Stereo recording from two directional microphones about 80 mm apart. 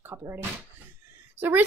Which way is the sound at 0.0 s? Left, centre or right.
Right.